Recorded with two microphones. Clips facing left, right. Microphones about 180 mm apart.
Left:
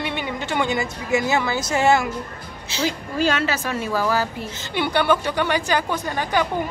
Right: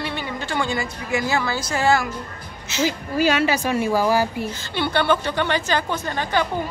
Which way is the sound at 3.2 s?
10° right (ahead or behind).